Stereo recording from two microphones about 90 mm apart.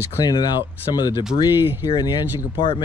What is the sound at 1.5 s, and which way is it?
Speech, 25° right (ahead or behind).